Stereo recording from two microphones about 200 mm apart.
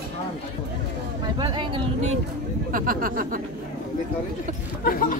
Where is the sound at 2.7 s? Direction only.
45° right (ahead or behind).